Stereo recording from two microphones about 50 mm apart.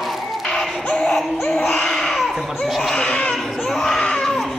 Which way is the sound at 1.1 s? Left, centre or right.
Centre.